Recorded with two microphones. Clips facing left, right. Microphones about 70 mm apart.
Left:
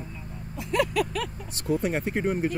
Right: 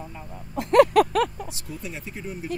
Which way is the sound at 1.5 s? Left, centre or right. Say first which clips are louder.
Left 10 dB; left.